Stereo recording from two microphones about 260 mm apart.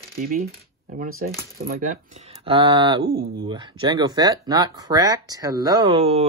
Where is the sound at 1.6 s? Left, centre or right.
Right.